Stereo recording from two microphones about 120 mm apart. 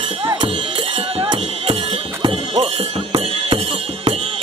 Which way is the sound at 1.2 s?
40° right (ahead or behind).